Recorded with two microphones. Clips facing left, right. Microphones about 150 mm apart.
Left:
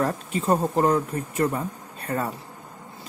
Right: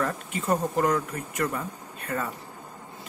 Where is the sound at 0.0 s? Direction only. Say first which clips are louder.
Left 4 dB; 35° left (ahead or behind).